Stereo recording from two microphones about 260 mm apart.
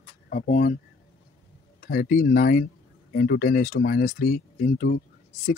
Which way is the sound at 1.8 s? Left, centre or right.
Left.